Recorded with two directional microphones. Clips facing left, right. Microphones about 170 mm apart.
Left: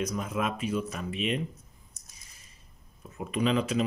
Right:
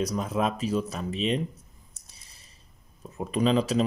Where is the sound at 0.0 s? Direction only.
35° right (ahead or behind).